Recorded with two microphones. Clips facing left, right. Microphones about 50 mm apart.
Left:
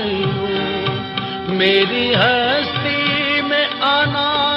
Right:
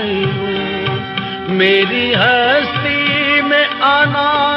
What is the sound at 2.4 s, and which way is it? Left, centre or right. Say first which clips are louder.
Music of bollywood: right 5 dB; right.